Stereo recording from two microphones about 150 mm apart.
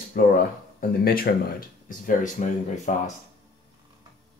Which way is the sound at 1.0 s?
80° left.